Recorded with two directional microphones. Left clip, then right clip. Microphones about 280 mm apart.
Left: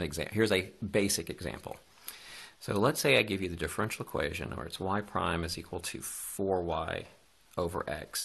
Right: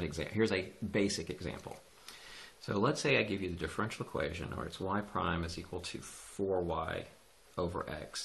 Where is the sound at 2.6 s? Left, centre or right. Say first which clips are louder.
Left 4 dB; left.